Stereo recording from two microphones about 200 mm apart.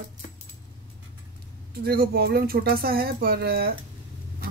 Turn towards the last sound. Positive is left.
turn(degrees=-50)  # may be behind; listen again after turning